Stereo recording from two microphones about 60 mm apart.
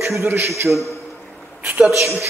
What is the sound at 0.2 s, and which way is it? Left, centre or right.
Speech, right.